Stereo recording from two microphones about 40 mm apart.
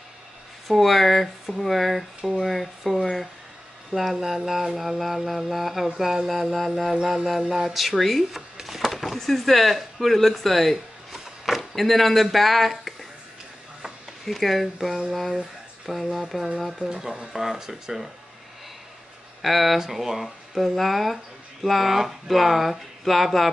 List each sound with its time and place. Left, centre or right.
0.7 s mantra: centre
5.9 s speech: centre
6.9 s speech: centre
8.4 s speech: centre
11.1 s a sound: centre
11.7 s mantra: centre
14.2 s mantra: centre
16.8 s speech: centre
19.4 s mantra: centre